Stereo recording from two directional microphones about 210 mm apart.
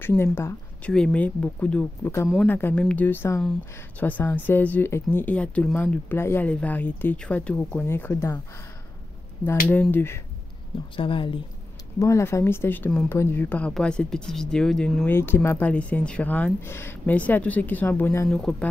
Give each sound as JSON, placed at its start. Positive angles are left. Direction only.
{"t": 0.0, "sound": "speech", "side_deg": 10}
{"t": 9.7, "sound": "speech", "side_deg": 10}
{"t": 11.0, "sound": "speech", "side_deg": 25}
{"t": 12.0, "sound": "a man's voice", "side_deg": 15}